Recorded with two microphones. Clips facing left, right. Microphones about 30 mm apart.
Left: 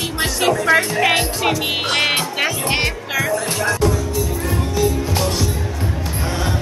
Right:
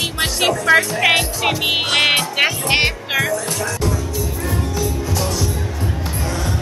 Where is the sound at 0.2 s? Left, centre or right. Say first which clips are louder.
Left 1 dB; right.